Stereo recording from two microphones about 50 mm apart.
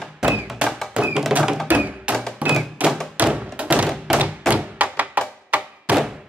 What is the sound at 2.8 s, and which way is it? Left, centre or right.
Thump, right.